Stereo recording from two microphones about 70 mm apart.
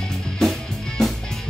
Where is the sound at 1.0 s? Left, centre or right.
Centre.